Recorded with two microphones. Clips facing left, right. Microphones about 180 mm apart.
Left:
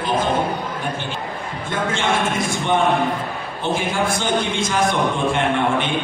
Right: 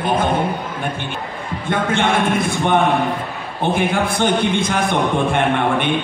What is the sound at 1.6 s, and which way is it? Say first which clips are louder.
Speech: right 4 dB; 60° right (ahead or behind).